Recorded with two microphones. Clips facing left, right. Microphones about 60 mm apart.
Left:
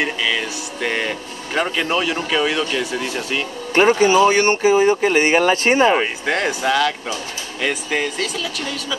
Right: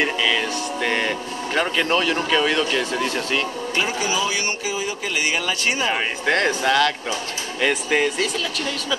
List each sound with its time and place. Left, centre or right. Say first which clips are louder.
0.0 s speech: even; centre
3.7 s speech: left 11 dB; left
6.2 s speech: even; centre